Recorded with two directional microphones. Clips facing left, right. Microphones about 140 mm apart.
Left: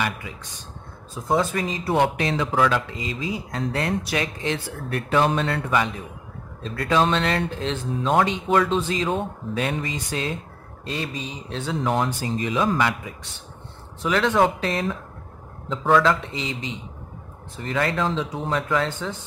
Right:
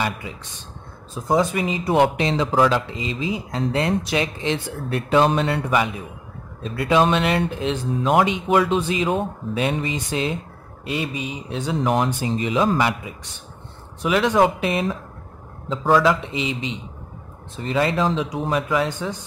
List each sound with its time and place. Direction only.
1.3 s speech: 15° right (ahead or behind)
16.0 s speech: 15° right (ahead or behind)